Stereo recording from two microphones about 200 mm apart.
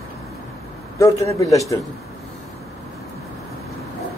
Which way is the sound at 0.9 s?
15° left (ahead or behind).